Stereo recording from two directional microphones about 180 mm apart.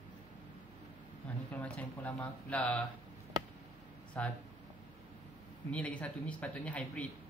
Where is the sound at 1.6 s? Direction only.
10° left (ahead or behind).